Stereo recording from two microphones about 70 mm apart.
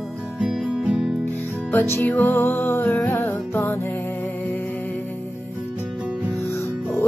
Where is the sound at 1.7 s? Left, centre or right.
Left.